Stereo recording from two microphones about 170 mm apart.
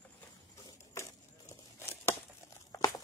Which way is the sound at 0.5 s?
15° left (ahead or behind).